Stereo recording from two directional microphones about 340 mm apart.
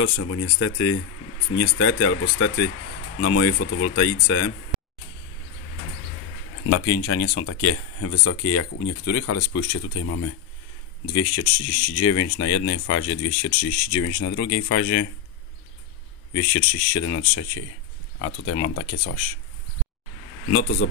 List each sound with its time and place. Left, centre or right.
0.0 s speech: left
6.7 s speech: left
16.3 s speech: left